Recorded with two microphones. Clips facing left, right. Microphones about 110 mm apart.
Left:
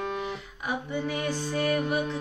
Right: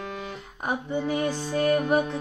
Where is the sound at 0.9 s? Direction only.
30° right (ahead or behind).